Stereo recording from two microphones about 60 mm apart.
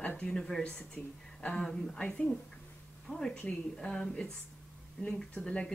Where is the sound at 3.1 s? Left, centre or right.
Centre.